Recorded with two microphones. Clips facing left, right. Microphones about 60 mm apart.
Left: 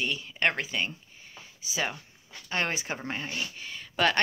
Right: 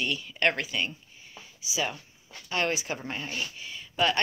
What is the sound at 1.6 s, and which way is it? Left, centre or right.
Speech, left.